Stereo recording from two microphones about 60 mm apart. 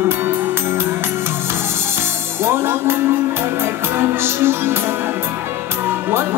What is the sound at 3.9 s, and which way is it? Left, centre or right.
Music, right.